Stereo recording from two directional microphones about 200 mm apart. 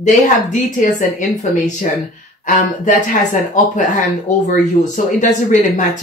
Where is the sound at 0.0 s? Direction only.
40° left (ahead or behind).